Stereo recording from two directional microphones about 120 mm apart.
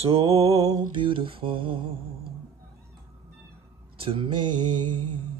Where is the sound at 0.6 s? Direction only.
30° right (ahead or behind).